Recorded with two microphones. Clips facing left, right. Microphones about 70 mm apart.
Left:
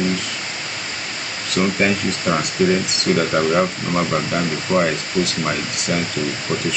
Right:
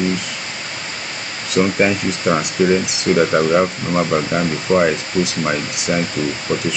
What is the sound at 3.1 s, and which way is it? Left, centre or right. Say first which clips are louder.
Speech: right 4 dB; right.